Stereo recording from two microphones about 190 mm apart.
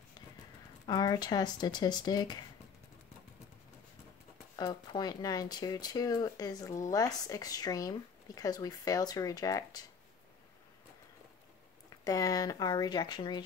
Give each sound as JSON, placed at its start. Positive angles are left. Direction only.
{"t": 0.8, "sound": "speech", "side_deg": 20}
{"t": 4.6, "sound": "speech", "side_deg": 20}
{"t": 12.0, "sound": "speech", "side_deg": 20}